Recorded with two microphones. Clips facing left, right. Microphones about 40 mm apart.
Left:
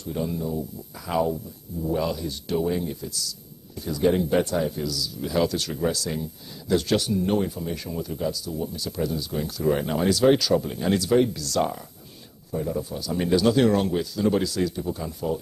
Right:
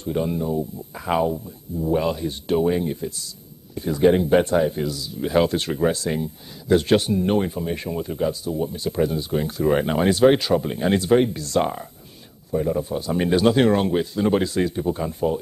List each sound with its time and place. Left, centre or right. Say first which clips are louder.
0.0 s speech: right 5 dB; right